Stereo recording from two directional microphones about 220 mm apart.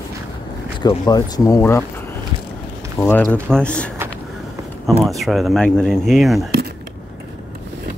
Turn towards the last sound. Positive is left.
turn(degrees=0)  # may be behind; listen again after turning